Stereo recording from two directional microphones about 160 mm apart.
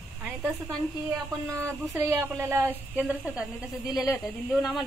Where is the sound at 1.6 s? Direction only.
15° right (ahead or behind).